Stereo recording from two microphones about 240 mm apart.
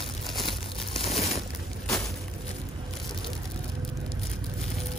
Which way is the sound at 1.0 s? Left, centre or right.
Left.